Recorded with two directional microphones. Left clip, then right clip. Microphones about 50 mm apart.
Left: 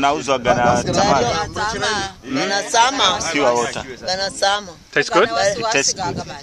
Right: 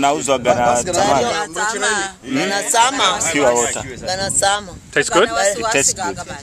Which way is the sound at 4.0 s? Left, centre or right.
Centre.